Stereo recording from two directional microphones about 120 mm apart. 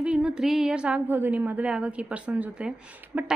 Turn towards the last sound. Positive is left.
turn(degrees=-10)  # may be behind; listen again after turning